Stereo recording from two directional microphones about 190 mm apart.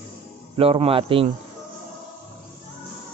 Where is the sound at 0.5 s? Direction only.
30° right (ahead or behind).